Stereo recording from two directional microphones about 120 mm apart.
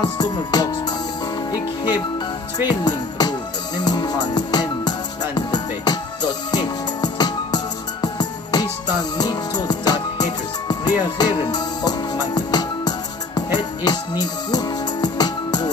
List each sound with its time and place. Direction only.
0.0 s music: 35° left (ahead or behind)
2.7 s music: 35° left (ahead or behind)